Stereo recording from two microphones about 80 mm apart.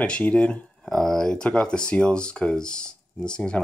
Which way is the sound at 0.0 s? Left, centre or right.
Centre.